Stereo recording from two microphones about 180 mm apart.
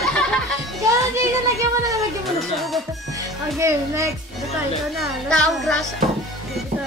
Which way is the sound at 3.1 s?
15° right (ahead or behind).